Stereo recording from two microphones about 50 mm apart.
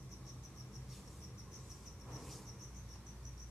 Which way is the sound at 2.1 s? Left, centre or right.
Centre.